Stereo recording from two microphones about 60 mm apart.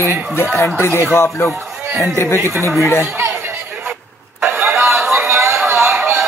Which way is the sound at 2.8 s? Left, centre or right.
Left.